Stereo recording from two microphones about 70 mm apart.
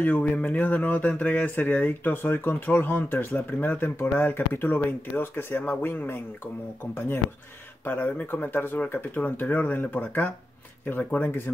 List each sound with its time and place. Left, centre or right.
0.0 s speech: left
7.8 s speech: left